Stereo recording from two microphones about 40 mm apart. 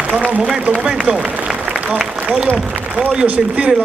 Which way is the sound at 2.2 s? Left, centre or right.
Right.